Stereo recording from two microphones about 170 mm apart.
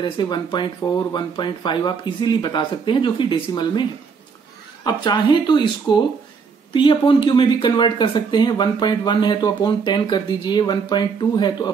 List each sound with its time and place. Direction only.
0.0 s speech: 25° left (ahead or behind)
4.8 s speech: 25° left (ahead or behind)